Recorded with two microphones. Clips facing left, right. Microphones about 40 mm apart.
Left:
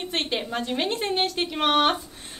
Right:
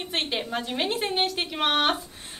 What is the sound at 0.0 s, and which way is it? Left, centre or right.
A woman's voice, centre.